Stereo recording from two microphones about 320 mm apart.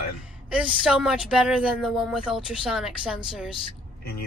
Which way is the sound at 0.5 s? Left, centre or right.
Centre.